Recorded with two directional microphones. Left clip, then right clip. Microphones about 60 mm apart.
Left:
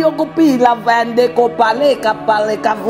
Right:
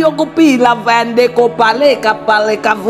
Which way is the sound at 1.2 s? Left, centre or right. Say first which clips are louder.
Right 2 dB; centre.